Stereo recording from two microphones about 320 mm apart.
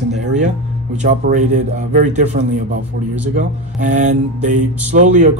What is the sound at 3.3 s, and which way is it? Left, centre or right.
Speech, right.